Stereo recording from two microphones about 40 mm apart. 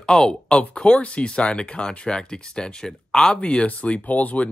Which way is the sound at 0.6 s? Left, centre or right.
Left.